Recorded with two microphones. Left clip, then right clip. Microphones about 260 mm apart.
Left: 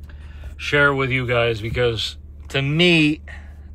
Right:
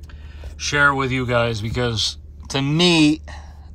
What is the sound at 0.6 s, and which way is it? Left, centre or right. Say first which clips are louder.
Speech: even; centre.